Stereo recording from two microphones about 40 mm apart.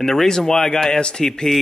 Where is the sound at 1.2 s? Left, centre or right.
Centre.